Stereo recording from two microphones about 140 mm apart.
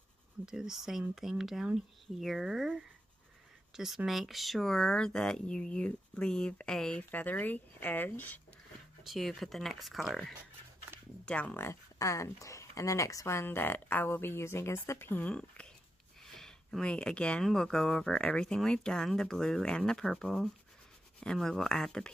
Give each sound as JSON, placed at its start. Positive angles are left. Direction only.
{"t": 0.5, "sound": "speech", "side_deg": -5}
{"t": 9.0, "sound": "speech", "side_deg": 0}
{"t": 11.2, "sound": "speech", "side_deg": 10}